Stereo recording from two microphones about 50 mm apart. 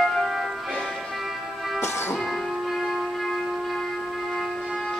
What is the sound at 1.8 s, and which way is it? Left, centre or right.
Music, left.